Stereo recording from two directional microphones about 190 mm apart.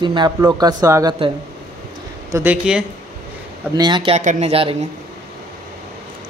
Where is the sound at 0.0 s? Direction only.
25° right (ahead or behind).